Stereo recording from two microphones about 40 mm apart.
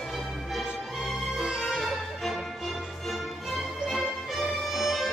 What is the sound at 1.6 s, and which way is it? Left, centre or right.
Music, centre.